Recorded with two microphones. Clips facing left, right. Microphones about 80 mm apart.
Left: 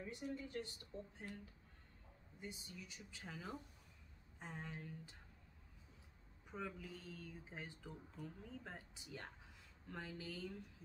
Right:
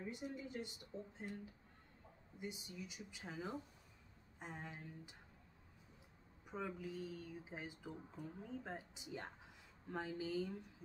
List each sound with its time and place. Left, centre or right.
0.2 s speech: centre
6.4 s speech: centre